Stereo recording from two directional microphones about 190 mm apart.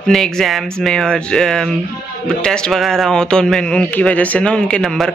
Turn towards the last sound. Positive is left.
turn(degrees=0)  # may be behind; listen again after turning